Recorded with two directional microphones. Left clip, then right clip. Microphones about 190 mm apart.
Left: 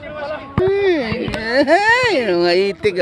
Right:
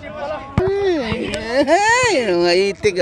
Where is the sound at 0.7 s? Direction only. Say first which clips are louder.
Left 2 dB; 10° left (ahead or behind).